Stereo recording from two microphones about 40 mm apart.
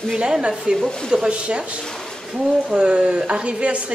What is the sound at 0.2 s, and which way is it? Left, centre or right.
Speech, right.